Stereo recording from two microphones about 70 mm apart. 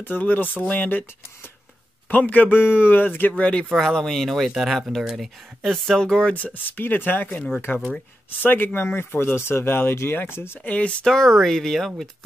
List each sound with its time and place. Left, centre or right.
0.0 s a man's voice: left
2.0 s a man's voice: left
3.6 s speech: centre
6.3 s a man's voice: left
10.7 s a man's voice: centre
11.1 s speech: centre